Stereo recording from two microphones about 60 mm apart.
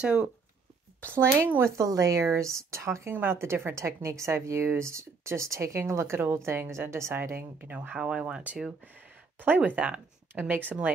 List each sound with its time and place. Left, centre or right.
0.0 s speech: centre
1.0 s speech: right
1.8 s speech: right
2.2 s speech: right
3.1 s a woman's voice: right
8.0 s speech: centre
8.8 s speech: right